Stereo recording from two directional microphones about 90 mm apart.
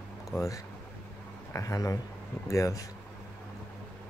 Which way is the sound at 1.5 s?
35° left (ahead or behind).